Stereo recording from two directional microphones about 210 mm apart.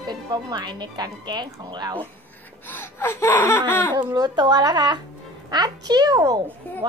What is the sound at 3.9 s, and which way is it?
Speech, 20° right (ahead or behind).